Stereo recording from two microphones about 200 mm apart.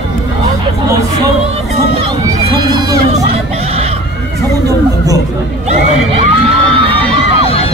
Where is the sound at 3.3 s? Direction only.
30° right (ahead or behind).